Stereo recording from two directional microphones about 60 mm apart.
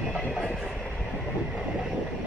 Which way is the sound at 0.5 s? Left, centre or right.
Centre.